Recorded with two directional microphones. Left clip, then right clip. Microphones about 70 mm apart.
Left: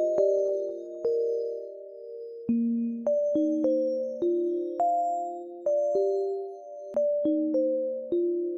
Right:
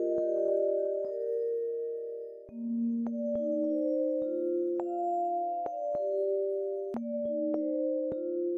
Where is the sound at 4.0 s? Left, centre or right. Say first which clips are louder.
Right 1 dB; centre.